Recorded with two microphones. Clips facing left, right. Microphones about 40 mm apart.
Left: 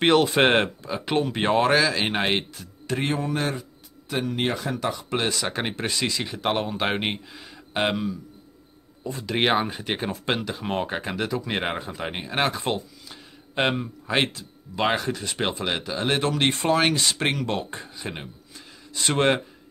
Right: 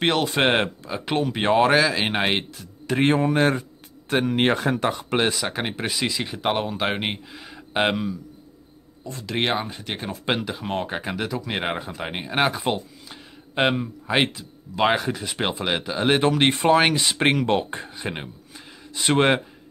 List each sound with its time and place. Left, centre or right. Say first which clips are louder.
0.0 s speech: left 2 dB; centre
3.0 s speech: right 7 dB; right
5.3 s speech: even; centre
9.2 s speech: left 2 dB; centre
10.1 s speech: right 1 dB; centre
10.6 s speech: even; centre